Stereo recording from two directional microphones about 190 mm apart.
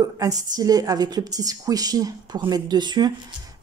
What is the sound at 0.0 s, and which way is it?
A woman's voice, 20° right (ahead or behind).